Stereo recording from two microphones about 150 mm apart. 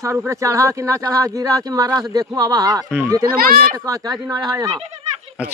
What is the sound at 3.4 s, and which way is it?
Speech, 75° right (ahead or behind).